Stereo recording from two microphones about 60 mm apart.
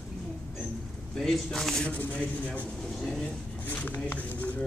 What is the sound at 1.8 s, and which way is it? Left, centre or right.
Speech, left.